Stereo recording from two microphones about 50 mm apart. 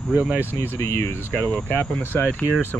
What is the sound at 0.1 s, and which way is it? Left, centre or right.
Speech, right.